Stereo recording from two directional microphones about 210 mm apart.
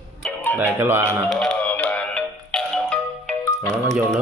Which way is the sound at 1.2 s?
5° left (ahead or behind).